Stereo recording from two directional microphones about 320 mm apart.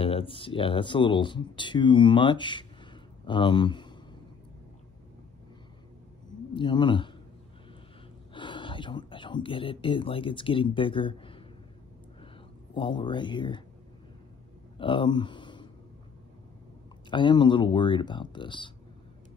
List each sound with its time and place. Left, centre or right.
0.0 s speech: centre
6.5 s speech: centre
8.3 s speech: centre
12.7 s speech: centre
14.8 s a sound: centre
17.1 s speech: centre